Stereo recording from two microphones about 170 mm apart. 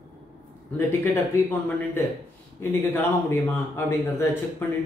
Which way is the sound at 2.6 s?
15° left (ahead or behind).